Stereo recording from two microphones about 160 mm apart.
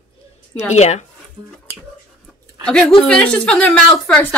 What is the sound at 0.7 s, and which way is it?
Speech, 45° left (ahead or behind).